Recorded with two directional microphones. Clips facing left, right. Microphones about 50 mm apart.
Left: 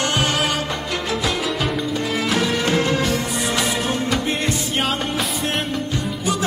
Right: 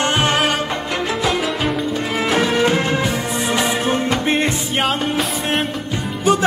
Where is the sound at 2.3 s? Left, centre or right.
Right.